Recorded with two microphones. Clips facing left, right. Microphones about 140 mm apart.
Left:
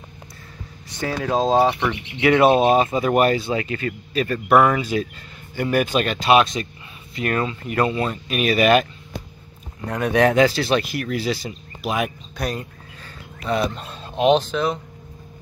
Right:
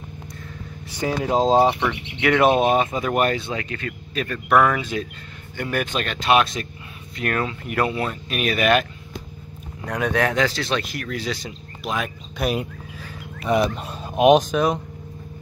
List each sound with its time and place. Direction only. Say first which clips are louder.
0.9 s speech: right 1 dB; 15° right (ahead or behind)
1.8 s speech: left 2 dB; 5° left (ahead or behind)
2.4 s speech: left 2 dB; 30° left (ahead or behind)
3.1 s speech: left 4 dB; 5° left (ahead or behind)
9.8 s speech: left 4 dB; centre (ahead or behind)
12.5 s speech: right 5 dB; 15° right (ahead or behind)